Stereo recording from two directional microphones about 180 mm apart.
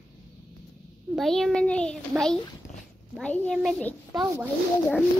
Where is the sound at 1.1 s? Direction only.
Centre (ahead or behind).